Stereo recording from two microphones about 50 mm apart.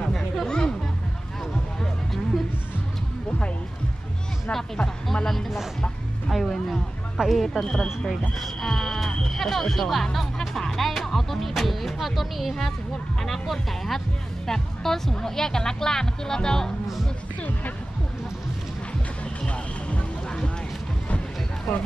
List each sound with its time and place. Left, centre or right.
0.5 s music: centre
4.5 s speech: centre
5.8 s music: centre
7.2 s speech: centre
8.4 s music: centre
9.2 s speech: centre
19.4 s music: centre